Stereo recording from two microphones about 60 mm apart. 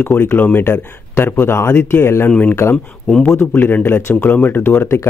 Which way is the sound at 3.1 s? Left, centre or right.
Centre.